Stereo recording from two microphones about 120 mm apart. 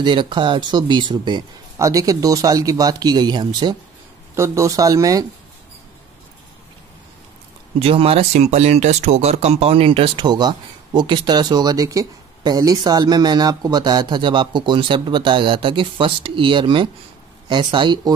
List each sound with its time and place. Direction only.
0.0 s speech: 40° right (ahead or behind)
1.8 s speech: 30° right (ahead or behind)
4.4 s speech: 25° right (ahead or behind)
7.8 s speech: 55° right (ahead or behind)
10.2 s speech: 35° right (ahead or behind)